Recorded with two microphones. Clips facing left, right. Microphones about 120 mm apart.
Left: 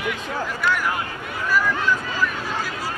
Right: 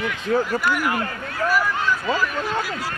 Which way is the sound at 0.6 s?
10° right (ahead or behind).